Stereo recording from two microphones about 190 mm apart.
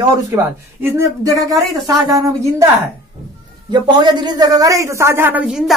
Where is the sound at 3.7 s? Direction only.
25° right (ahead or behind).